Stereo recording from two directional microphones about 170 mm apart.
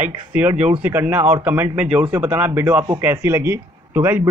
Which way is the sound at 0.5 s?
40° right (ahead or behind).